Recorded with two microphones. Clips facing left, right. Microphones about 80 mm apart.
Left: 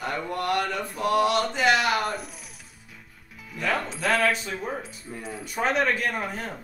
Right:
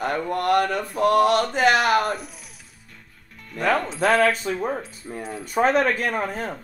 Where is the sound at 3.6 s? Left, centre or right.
Right.